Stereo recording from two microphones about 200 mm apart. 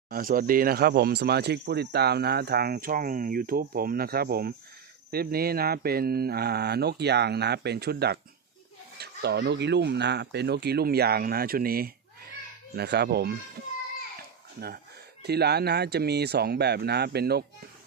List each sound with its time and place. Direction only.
0.1 s speech: 45° right (ahead or behind)
15.2 s speech: 55° right (ahead or behind)